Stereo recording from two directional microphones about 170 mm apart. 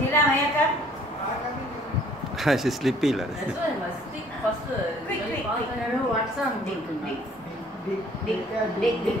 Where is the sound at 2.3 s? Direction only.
Centre (ahead or behind).